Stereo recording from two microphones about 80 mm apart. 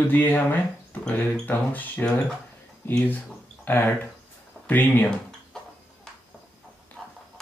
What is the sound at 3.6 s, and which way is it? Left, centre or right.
Speech, left.